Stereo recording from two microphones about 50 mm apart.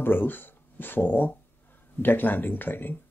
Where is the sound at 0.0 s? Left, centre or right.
Left.